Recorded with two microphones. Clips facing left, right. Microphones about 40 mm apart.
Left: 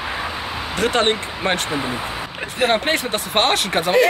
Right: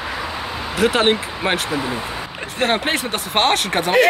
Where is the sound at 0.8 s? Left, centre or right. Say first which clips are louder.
Right 2 dB; centre.